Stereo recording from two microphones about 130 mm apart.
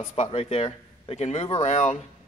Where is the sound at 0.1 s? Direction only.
50° left (ahead or behind).